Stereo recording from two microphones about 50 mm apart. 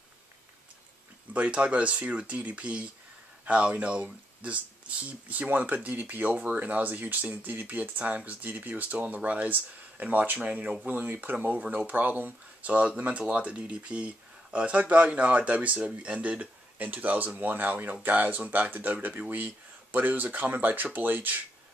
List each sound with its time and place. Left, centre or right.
1.3 s speech: right